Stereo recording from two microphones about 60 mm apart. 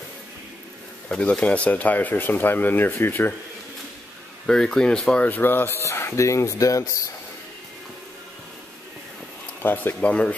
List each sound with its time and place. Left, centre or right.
1.0 s speech: centre; by 3.3 s left
4.5 s speech: centre
5.2 s speech: left
9.6 s speech: left
9.9 s speech: centre